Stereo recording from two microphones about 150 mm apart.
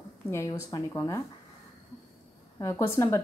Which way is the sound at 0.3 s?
20° left (ahead or behind).